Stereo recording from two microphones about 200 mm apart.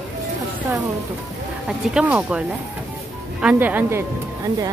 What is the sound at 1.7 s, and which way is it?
Speech, 5° right (ahead or behind).